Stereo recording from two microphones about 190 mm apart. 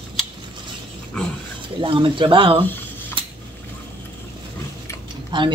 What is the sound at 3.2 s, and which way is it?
Scissors, 25° right (ahead or behind).